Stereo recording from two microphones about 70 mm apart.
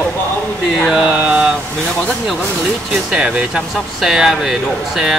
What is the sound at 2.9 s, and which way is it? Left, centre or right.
Speech, centre.